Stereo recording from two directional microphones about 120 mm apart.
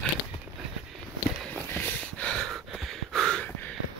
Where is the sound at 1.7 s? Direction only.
15° left (ahead or behind).